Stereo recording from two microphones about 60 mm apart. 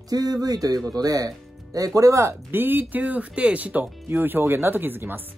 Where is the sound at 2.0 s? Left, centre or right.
Right.